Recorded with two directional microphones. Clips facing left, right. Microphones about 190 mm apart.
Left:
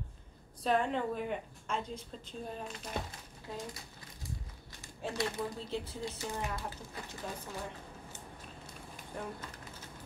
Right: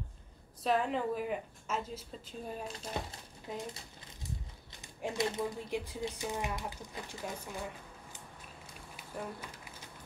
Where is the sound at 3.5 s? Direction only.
20° right (ahead or behind).